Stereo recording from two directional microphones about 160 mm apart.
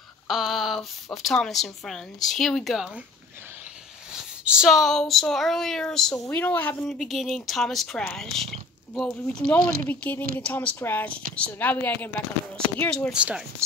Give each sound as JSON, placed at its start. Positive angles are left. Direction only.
{"t": 0.3, "sound": "speech", "side_deg": 0}
{"t": 4.1, "sound": "speech", "side_deg": -5}
{"t": 6.1, "sound": "a woman's voice", "side_deg": 15}
{"t": 13.1, "sound": "speech", "side_deg": -5}
{"t": 13.6, "sound": "rub", "side_deg": -20}